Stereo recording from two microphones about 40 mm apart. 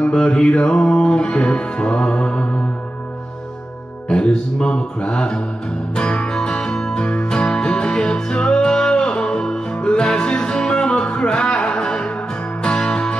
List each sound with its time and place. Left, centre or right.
0.0 s music: left
4.1 s music: left
7.0 s music: left